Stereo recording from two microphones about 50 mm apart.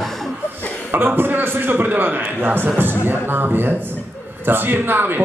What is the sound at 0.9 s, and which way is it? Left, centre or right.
A man's voice, right.